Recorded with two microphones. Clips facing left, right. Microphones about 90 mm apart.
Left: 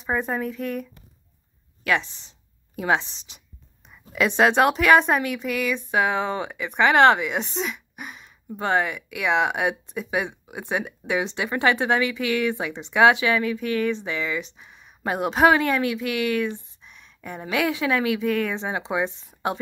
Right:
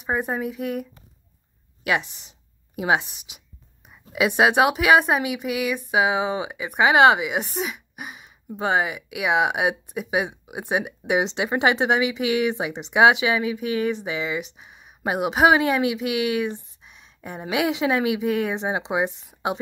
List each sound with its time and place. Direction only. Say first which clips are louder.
0.0 s speech: even; 15° right (ahead or behind)
1.9 s speech: even; 15° right (ahead or behind)